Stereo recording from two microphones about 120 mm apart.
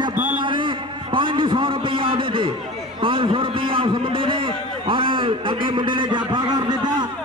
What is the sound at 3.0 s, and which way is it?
A man's voice, 45° right (ahead or behind).